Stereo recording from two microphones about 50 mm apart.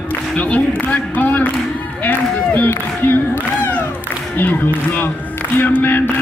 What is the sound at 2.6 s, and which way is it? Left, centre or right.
Speech, left.